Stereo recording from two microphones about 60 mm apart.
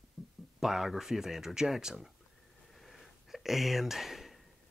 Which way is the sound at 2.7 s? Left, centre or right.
Centre.